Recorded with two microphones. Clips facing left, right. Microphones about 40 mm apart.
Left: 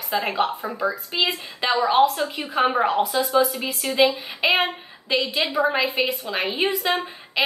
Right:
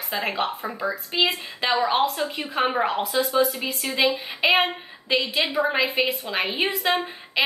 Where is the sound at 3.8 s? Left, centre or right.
Centre.